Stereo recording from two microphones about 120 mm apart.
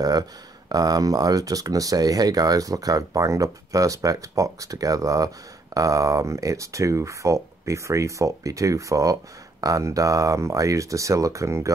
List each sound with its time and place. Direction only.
0.0 s speech: 30° right (ahead or behind)